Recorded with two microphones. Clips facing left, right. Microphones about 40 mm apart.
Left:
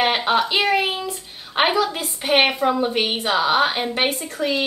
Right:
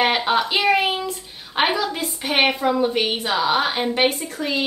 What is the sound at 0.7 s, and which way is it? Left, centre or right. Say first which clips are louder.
Speech: right 2 dB; centre.